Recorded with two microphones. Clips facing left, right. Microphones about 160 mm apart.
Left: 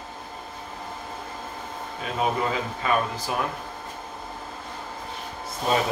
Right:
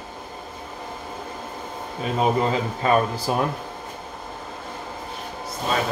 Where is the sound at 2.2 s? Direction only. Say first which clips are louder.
Right 4 dB; 30° right (ahead or behind).